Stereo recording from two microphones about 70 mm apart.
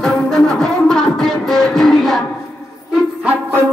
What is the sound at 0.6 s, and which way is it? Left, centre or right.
Music, centre.